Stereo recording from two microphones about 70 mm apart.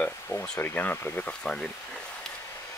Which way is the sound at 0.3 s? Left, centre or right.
Left.